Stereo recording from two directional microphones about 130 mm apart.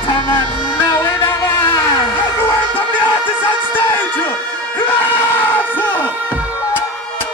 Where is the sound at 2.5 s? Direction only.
15° left (ahead or behind).